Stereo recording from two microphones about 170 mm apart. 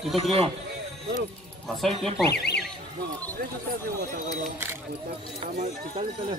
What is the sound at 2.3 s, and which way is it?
Speech, 75° left (ahead or behind).